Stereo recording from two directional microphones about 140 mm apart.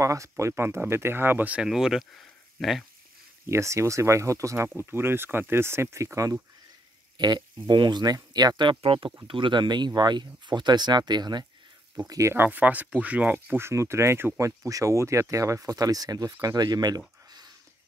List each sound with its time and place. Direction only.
0.0 s speech: 20° right (ahead or behind); by 2.8 s centre (ahead or behind)
3.4 s speech: 20° right (ahead or behind)